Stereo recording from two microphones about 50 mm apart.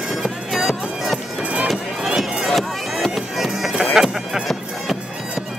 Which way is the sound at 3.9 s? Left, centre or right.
Centre.